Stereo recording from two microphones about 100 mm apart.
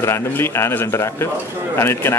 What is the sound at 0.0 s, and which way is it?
Speech, 25° left (ahead or behind).